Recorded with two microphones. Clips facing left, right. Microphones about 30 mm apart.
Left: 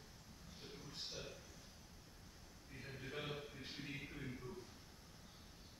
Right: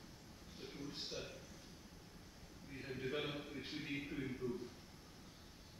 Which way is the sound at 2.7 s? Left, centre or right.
Centre.